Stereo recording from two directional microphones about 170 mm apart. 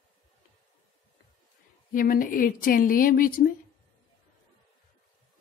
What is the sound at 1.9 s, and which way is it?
A woman's voice, 55° left (ahead or behind).